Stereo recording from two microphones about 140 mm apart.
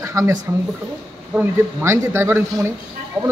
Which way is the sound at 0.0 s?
20° right (ahead or behind).